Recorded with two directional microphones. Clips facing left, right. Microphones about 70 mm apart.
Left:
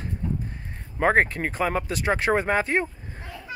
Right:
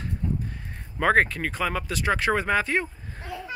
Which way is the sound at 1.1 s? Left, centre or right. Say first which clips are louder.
Left 1 dB; left.